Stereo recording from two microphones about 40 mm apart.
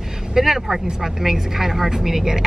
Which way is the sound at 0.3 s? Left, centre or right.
Centre.